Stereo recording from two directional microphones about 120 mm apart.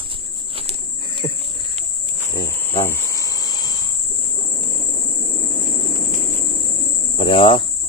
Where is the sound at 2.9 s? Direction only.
30° left (ahead or behind).